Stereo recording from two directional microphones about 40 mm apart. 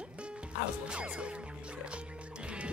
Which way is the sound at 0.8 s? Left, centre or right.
Right.